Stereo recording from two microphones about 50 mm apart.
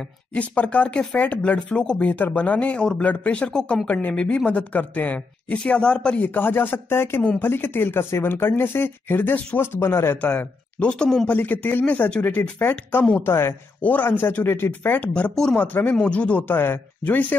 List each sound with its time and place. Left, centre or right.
0.3 s speech: left
5.6 s speech: centre
6.1 s speech: left
9.6 s speech: left
10.2 s speech: left
13.2 s speech: left
13.7 s speech: left